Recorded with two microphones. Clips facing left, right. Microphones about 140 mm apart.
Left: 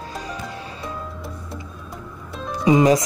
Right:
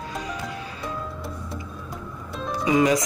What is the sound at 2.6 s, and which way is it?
Speech, 30° left (ahead or behind).